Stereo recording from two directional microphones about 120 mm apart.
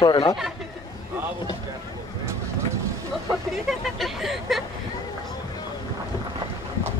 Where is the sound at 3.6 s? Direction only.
Centre (ahead or behind).